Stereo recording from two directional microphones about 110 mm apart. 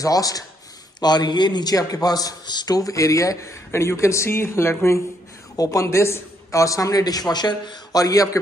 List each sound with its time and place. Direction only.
0.0 s a man's voice: 35° left (ahead or behind)